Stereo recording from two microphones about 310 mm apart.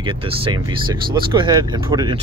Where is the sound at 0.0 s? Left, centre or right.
Centre.